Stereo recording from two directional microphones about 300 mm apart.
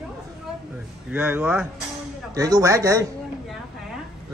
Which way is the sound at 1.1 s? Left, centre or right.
Centre.